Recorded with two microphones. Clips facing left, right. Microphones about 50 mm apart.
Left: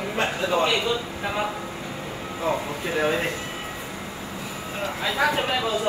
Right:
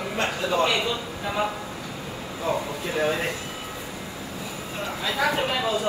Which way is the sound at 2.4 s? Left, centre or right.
Centre.